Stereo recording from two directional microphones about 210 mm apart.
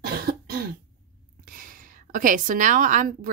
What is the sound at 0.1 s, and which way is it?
Cough, 45° right (ahead or behind).